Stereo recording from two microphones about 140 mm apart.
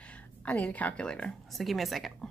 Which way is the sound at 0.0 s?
10° left (ahead or behind).